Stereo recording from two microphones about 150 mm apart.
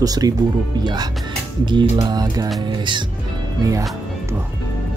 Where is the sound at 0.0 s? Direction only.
25° right (ahead or behind).